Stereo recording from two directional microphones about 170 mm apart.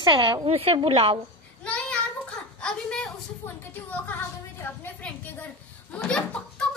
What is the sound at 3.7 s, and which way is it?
A woman's voice, 10° left (ahead or behind).